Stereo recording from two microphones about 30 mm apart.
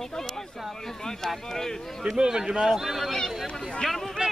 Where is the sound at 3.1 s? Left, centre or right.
Centre.